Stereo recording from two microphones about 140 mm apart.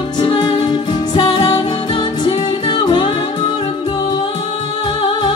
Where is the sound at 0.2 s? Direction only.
35° left (ahead or behind).